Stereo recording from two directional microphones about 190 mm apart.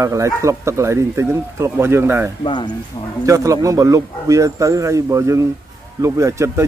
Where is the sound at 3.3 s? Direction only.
15° right (ahead or behind).